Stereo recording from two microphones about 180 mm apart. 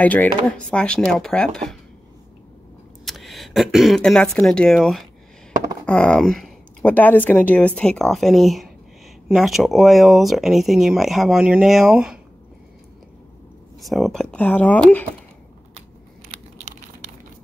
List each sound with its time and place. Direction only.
0.0 s speech: 10° left (ahead or behind)
3.1 s speech: centre (ahead or behind)
13.7 s speech: centre (ahead or behind)